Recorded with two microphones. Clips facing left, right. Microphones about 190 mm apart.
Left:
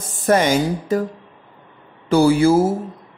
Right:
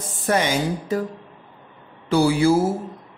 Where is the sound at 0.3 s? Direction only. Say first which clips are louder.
Left 5 dB; 45° left (ahead or behind).